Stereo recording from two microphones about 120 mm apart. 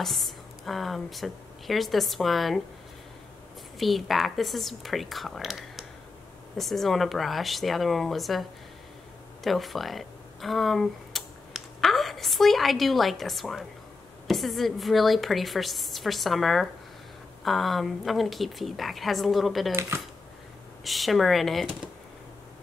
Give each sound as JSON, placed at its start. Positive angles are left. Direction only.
{"t": 0.0, "sound": "speech", "side_deg": 0}
{"t": 3.7, "sound": "a woman's voice", "side_deg": 0}
{"t": 19.7, "sound": "speech", "side_deg": -20}
{"t": 20.8, "sound": "a woman's voice", "side_deg": 0}